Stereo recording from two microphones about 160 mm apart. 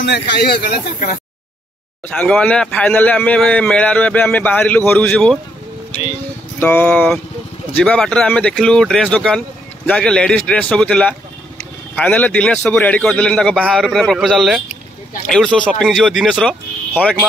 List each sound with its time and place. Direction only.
0.1 s speech: 90° left
2.0 s a man's voice: 5° left (ahead or behind)
6.6 s a man's voice: 10° left (ahead or behind)